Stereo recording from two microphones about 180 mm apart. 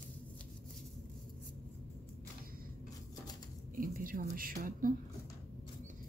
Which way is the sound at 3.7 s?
50° right (ahead or behind).